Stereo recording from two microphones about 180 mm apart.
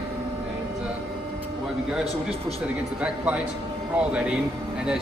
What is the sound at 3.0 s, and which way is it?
Speech, 5° right (ahead or behind).